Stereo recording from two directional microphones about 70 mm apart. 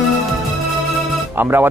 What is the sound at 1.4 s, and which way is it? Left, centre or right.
Speech, right.